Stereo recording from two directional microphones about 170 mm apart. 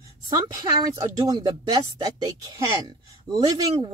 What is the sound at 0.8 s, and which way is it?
Speech, 20° right (ahead or behind).